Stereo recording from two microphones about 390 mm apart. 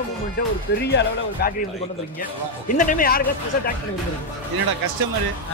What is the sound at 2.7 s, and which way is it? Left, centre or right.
Speech, left.